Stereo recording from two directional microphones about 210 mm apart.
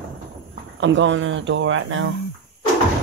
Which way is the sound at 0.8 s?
60° right (ahead or behind).